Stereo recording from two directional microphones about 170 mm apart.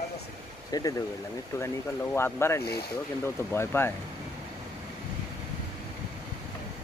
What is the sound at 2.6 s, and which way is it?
Speech, 70° left (ahead or behind).